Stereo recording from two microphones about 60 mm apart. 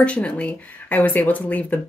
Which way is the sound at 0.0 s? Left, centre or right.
Centre.